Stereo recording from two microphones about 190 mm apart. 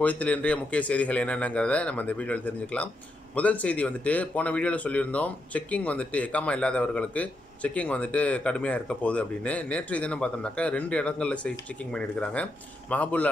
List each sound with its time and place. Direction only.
0.0 s speech: 5° left (ahead or behind)